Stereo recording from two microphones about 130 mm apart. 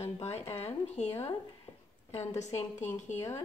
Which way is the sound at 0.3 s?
20° left (ahead or behind).